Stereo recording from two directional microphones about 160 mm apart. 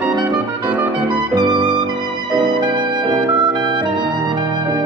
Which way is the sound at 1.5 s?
30° right (ahead or behind).